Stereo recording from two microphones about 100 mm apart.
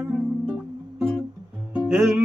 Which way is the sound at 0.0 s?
10° right (ahead or behind).